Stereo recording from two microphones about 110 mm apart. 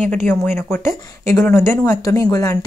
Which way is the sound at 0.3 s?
20° left (ahead or behind).